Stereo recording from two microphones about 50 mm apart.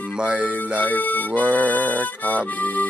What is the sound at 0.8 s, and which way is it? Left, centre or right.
Music, left.